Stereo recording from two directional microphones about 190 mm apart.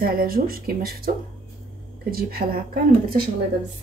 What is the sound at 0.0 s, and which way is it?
A woman's voice, 50° right (ahead or behind).